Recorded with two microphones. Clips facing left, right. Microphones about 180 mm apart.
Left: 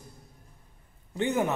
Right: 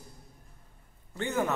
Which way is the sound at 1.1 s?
15° left (ahead or behind).